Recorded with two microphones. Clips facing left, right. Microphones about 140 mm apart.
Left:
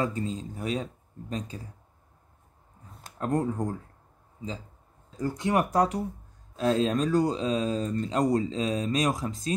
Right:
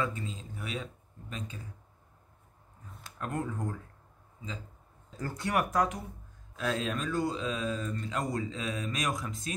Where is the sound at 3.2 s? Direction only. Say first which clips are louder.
Left 7 dB; 35° left (ahead or behind).